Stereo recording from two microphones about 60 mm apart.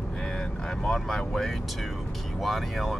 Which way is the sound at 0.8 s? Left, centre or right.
Centre.